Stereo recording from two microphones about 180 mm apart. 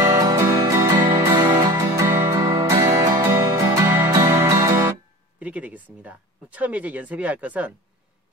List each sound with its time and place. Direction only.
0.2 s music: 20° right (ahead or behind)
5.4 s a sound: 10° right (ahead or behind)
6.0 s speech: 10° right (ahead or behind)